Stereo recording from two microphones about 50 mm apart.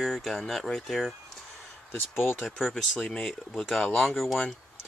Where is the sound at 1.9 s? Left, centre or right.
Left.